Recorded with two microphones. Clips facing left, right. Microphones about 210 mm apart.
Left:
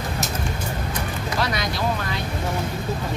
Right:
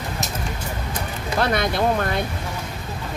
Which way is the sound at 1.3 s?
55° right (ahead or behind).